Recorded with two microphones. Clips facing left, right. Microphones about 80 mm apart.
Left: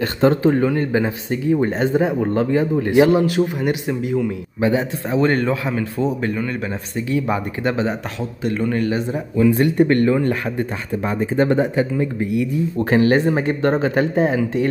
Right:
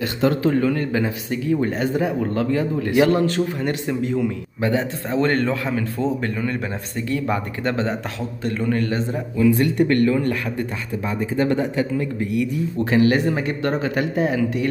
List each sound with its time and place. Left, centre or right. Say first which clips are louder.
0.3 s speech: left 3 dB; left
3.2 s a man's voice: left 3 dB; centre
9.5 s speech: left 2 dB; left
11.1 s speech: left 3 dB; left
12.9 s speech: left 2 dB; left